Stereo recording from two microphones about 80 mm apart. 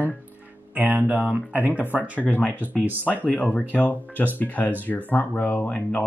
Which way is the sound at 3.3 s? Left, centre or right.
Centre.